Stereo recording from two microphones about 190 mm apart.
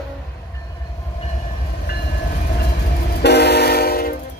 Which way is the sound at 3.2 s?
60° left (ahead or behind).